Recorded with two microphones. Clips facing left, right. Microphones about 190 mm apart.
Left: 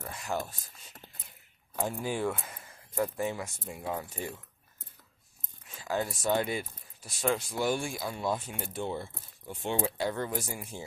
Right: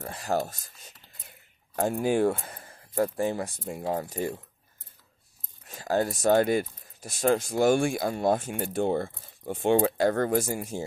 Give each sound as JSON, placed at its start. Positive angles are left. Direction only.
{"t": 0.0, "sound": "speech", "side_deg": -35}
{"t": 1.8, "sound": "speech", "side_deg": -55}
{"t": 2.2, "sound": "speech", "side_deg": -35}
{"t": 5.7, "sound": "speech", "side_deg": -40}